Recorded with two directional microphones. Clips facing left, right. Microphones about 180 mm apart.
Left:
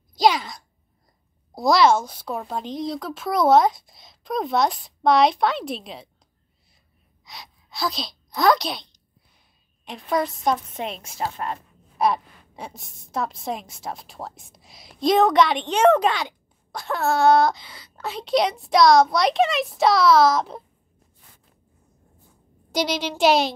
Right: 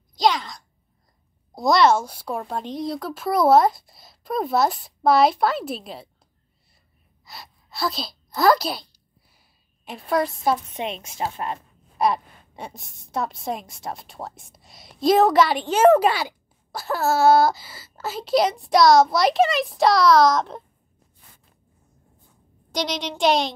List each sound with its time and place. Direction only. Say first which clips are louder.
0.2 s a woman's voice: left 2 dB; 10° left (ahead or behind)
7.2 s a sound: even; centre (ahead or behind)
9.8 s a woman's voice: right 1 dB; 5° right (ahead or behind)
10.7 s a woman's voice: right 1 dB; 25° right (ahead or behind)
12.0 s a woman's voice: even; centre (ahead or behind)
22.7 s a woman's voice: left 3 dB; 5° left (ahead or behind)